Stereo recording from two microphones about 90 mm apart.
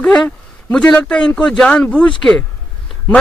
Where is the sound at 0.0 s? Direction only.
10° left (ahead or behind).